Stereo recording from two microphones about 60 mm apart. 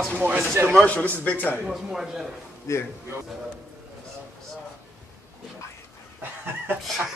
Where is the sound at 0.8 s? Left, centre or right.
Left.